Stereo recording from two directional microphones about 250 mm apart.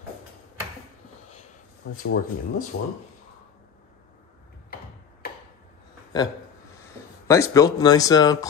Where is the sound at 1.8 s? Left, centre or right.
Left.